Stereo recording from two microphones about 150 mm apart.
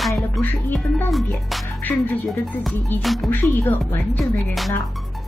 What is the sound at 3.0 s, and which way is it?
Speech, centre (ahead or behind).